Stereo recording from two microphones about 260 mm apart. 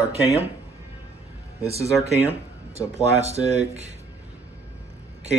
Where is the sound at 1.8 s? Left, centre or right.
Centre.